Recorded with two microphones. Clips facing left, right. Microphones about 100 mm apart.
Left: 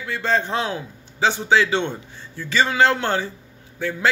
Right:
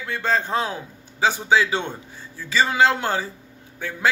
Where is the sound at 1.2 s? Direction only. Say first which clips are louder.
Left 1 dB; 10° right (ahead or behind).